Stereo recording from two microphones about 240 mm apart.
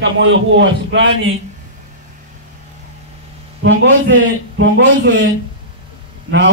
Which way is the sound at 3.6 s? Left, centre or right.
Right.